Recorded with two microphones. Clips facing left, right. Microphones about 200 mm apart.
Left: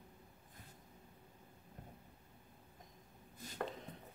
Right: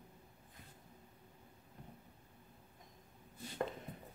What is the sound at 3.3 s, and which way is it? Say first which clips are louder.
Chopping: right 3 dB; 40° left (ahead or behind).